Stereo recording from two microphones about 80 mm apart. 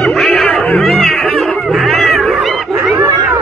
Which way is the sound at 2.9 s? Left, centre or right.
Centre.